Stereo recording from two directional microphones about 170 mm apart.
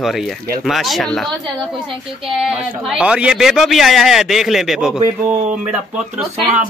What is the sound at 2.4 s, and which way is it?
Speech, 5° right (ahead or behind).